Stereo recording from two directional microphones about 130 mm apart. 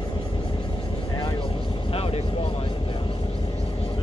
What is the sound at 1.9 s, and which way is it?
Vehicle, 50° left (ahead or behind).